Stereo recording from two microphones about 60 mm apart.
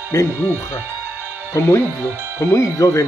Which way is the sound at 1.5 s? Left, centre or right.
Left.